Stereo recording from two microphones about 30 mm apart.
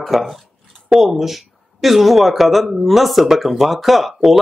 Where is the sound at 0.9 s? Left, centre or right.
Centre.